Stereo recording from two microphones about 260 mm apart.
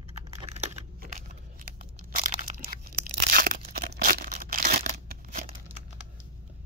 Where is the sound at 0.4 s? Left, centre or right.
Right.